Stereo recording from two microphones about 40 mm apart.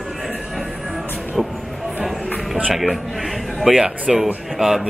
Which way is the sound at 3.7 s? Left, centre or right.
Centre.